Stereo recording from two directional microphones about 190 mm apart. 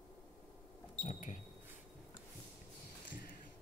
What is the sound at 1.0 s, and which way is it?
Speech, 40° left (ahead or behind).